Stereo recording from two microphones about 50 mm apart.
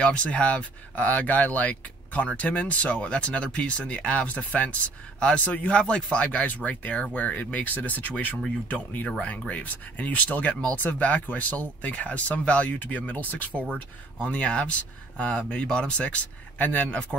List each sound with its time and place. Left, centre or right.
0.0 s speech: left
6.2 s speech: left